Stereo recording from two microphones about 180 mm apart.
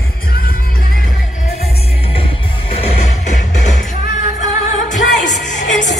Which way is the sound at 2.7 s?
35° left (ahead or behind).